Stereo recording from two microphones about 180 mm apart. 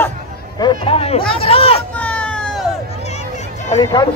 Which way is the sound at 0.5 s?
25° left (ahead or behind).